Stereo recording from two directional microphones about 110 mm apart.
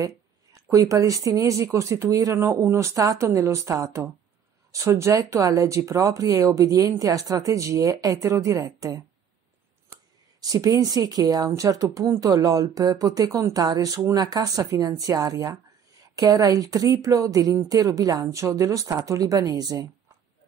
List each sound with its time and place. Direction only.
0.0 s speech: 30° right (ahead or behind)
10.4 s speech: 35° right (ahead or behind)